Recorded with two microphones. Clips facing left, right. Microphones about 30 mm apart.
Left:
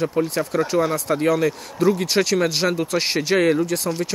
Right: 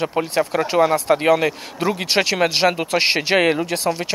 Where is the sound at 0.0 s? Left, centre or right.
Right.